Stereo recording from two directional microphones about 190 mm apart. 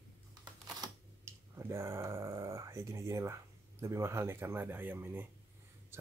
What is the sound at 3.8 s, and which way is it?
Speech, 15° right (ahead or behind).